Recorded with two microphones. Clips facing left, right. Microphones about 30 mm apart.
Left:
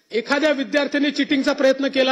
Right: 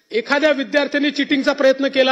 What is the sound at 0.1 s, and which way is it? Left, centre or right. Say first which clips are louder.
A man's voice: right 3 dB; centre.